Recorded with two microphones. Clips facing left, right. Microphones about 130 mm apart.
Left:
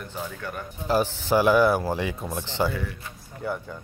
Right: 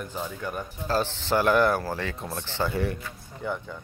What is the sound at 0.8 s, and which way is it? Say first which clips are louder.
Speech: left 3 dB; 15° left (ahead or behind).